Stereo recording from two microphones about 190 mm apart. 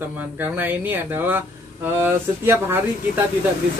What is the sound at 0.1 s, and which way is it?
Speech, 10° right (ahead or behind).